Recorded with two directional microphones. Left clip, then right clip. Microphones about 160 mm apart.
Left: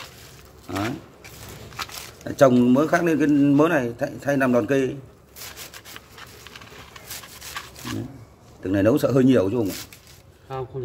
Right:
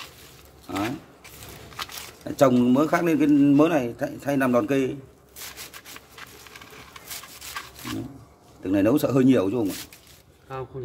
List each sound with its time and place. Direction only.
0.7 s a sound: centre (ahead or behind)
1.8 s speech: centre (ahead or behind)
7.5 s roaring cats: centre (ahead or behind)
8.6 s speech: centre (ahead or behind)